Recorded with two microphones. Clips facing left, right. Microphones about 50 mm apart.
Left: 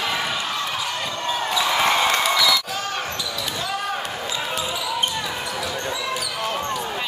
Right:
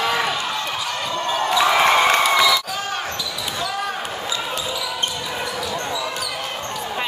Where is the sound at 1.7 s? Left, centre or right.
Right.